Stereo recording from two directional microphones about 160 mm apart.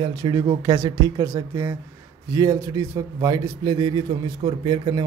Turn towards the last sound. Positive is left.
turn(degrees=-30)  # may be behind; listen again after turning